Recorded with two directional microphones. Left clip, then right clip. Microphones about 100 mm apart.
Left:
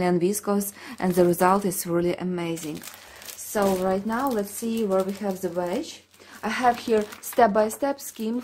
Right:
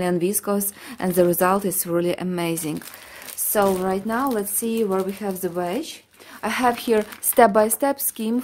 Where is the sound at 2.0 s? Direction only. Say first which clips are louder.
Right 2 dB; 45° right (ahead or behind).